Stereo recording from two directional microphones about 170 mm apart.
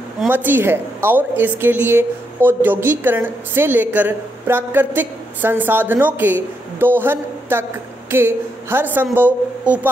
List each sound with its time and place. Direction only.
0.3 s a woman's voice: 10° right (ahead or behind)